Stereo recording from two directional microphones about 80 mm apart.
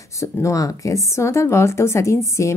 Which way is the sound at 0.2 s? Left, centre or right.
Left.